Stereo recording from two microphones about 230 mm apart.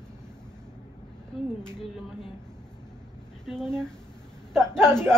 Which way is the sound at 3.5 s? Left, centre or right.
Centre.